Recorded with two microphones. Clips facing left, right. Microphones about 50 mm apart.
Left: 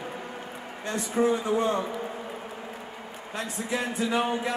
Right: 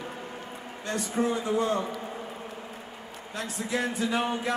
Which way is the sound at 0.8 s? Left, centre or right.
Left.